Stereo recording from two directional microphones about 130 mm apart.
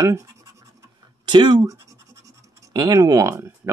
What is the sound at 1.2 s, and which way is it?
Speech, 35° right (ahead or behind).